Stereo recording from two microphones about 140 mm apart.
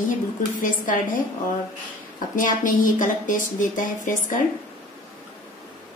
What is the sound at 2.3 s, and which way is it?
A woman's voice, 70° left (ahead or behind).